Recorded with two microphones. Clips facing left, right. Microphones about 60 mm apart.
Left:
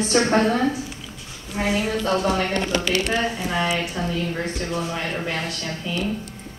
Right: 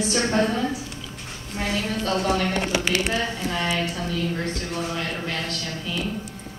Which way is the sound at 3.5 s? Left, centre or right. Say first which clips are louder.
Left 2 dB; left.